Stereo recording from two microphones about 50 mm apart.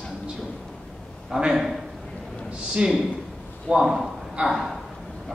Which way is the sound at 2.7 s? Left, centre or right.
Centre.